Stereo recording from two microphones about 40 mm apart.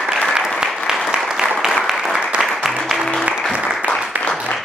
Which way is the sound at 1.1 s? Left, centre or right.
Centre.